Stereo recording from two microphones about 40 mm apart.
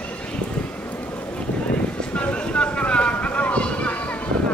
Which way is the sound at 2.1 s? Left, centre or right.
Left.